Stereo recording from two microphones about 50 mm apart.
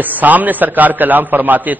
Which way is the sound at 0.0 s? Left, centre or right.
Right.